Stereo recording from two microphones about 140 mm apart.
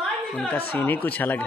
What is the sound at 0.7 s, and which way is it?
Speech, 10° left (ahead or behind).